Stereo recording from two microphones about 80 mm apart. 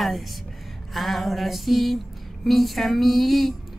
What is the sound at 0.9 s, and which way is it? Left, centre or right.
A woman's voice, centre.